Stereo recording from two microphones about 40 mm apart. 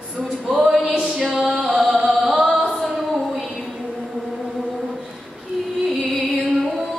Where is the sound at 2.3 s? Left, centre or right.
Centre.